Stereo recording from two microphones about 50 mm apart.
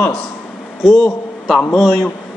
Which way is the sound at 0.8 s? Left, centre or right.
Centre.